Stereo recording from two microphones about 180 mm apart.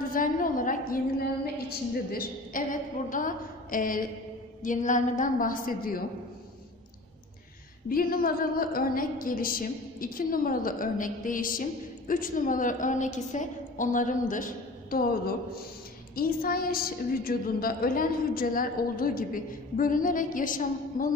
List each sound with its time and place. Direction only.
0.1 s a woman's voice: 50° left (ahead or behind)
7.9 s a woman's voice: 55° left (ahead or behind)